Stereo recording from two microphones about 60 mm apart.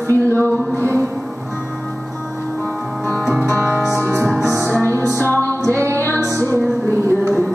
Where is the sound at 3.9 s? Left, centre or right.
Right.